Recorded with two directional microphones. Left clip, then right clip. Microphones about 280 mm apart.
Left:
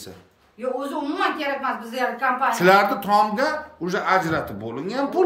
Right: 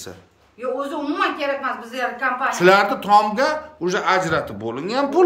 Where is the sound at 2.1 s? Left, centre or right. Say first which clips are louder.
Even; centre.